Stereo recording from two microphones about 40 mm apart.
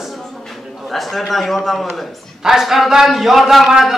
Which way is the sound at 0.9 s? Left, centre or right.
Centre.